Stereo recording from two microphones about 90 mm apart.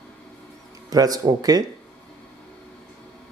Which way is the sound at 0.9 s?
45° right (ahead or behind).